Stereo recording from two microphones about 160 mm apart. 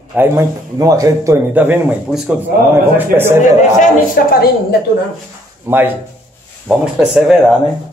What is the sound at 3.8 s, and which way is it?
Speech, 70° left (ahead or behind).